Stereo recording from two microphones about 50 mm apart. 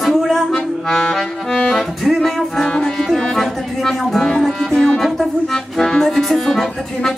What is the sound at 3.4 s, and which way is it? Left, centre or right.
Speech, centre.